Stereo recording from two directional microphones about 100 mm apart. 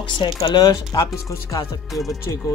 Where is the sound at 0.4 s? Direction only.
45° left (ahead or behind).